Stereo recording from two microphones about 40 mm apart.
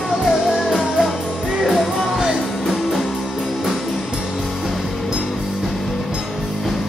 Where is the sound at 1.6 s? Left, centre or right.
Centre.